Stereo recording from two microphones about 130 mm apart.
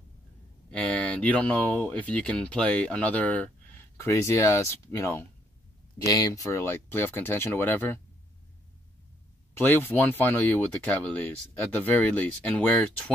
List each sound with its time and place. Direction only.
0.7 s speech: 10° left (ahead or behind)
9.5 s speech: 15° left (ahead or behind)